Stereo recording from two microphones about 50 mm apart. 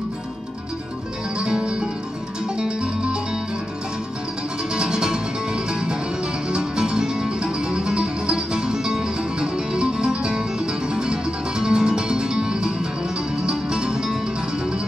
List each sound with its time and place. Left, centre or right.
1.4 s music: centre
4.7 s music: centre